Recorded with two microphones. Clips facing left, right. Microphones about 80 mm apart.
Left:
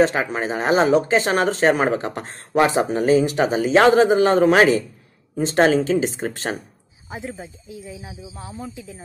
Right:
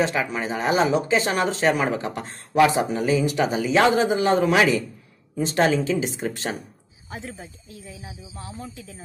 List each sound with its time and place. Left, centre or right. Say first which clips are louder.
0.0 s speech: left 5 dB; left
7.1 s speech: left 4 dB; centre